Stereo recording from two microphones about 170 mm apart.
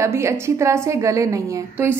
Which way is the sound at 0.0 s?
15° right (ahead or behind).